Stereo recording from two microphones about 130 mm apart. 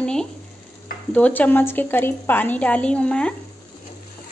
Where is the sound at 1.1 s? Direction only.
10° left (ahead or behind).